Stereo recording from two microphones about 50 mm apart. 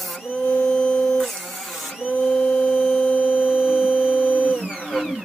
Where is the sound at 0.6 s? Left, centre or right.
Centre.